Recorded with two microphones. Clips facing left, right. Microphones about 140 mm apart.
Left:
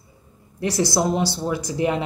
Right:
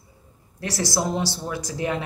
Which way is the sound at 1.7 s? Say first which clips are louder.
Left 4 dB; 15° left (ahead or behind).